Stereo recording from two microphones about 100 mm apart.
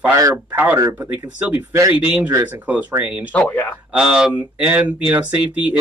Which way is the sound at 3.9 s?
10° right (ahead or behind).